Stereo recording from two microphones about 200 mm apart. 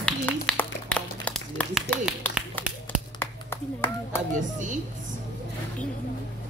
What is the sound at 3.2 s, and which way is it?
Clapping, 10° left (ahead or behind).